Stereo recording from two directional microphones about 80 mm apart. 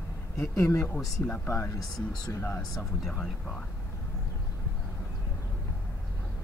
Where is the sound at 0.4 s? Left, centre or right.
Left.